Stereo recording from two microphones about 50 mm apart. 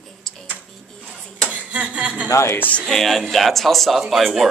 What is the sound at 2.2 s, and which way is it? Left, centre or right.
Speech, left.